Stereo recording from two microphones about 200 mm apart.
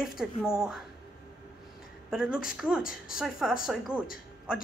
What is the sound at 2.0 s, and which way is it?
Speech, 5° right (ahead or behind).